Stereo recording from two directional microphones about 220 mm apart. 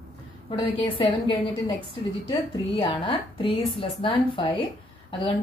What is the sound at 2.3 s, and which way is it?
A woman's voice, 25° left (ahead or behind).